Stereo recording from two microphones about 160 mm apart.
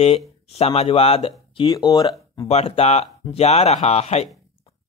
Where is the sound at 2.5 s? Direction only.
40° left (ahead or behind).